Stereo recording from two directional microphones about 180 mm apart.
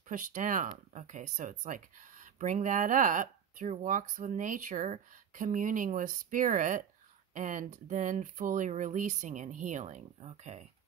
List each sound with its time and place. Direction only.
0.0 s speech: 45° right (ahead or behind)